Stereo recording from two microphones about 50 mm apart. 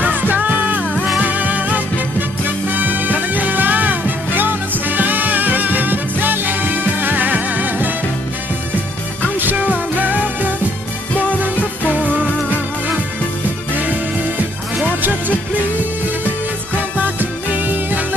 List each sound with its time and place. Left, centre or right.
0.0 s music: right
9.4 s music: right
12.4 s music: right
15.0 s music: right
17.0 s music: right